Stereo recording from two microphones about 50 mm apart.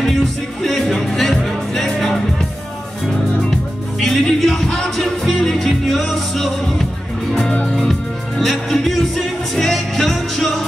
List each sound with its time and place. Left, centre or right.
0.0 s music: centre
4.0 s music: centre
7.6 s music: centre